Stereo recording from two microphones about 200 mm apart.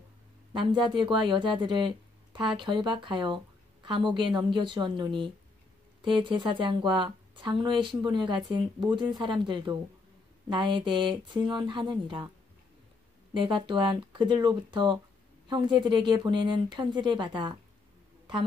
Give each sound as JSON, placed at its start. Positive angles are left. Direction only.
{"t": 0.5, "sound": "speech", "side_deg": -25}
{"t": 13.3, "sound": "speech", "side_deg": -25}